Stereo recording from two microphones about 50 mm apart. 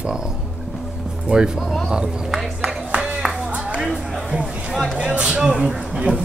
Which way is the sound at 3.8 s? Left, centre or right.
Centre.